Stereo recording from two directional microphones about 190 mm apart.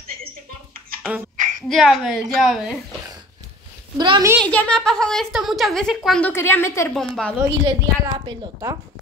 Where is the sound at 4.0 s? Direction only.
20° right (ahead or behind).